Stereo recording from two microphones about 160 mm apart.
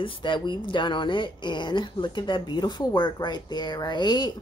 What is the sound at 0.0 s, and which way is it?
Speech, 30° left (ahead or behind).